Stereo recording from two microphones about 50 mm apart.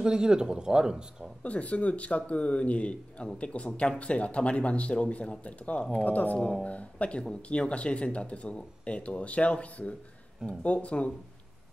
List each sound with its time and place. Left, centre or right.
0.0 s speech: centre
1.4 s speech: left